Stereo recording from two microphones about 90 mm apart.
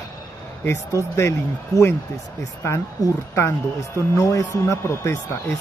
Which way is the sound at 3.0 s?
45° left (ahead or behind).